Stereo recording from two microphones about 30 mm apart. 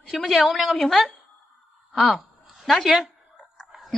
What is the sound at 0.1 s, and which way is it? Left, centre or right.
A woman's voice, centre.